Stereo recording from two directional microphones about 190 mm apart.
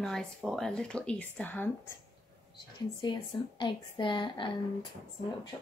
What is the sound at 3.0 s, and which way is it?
A woman's voice, 25° left (ahead or behind).